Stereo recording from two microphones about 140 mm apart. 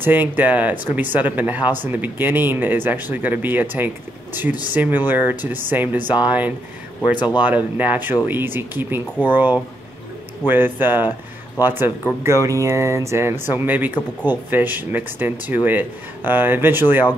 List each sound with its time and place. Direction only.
0.0 s speech: 15° right (ahead or behind)
7.0 s speech: 30° left (ahead or behind)
7.4 s speech: 10° right (ahead or behind)